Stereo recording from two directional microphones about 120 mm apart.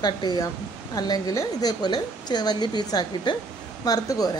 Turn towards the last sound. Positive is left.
turn(degrees=30)  # may be behind; listen again after turning